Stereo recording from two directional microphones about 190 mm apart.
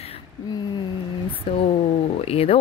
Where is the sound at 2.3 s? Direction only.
30° left (ahead or behind).